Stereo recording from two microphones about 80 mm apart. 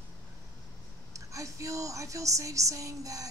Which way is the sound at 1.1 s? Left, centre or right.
Right.